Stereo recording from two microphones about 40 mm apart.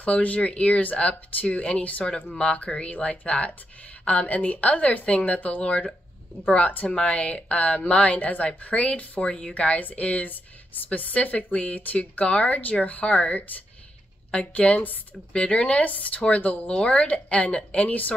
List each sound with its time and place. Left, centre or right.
0.0 s speech: left
5.6 s speech: left
7.1 s speech: left
9.6 s a woman's voice: left
17.8 s speech: left